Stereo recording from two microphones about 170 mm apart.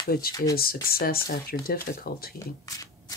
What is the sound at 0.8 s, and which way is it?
Speech, 60° left (ahead or behind).